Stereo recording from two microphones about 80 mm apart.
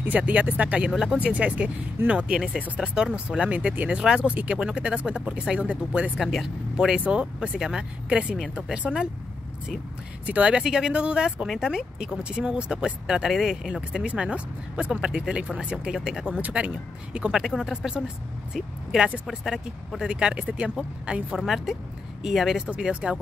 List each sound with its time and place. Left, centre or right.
0.0 s speech: centre
6.1 s speech: centre
10.2 s speech: centre
11.4 s speech: centre
11.7 s speech: centre
17.3 s speech: centre
21.4 s speech: centre